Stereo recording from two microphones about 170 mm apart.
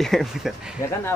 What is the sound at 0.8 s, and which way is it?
Speech, 20° left (ahead or behind).